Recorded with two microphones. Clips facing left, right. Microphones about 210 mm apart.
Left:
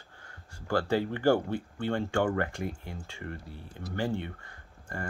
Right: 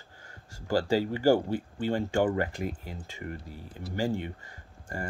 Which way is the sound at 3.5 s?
20° left (ahead or behind).